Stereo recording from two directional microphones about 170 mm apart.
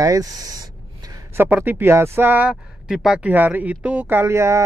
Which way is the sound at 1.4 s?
10° right (ahead or behind).